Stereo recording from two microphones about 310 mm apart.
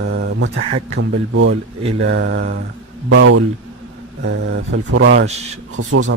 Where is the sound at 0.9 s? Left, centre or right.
Right.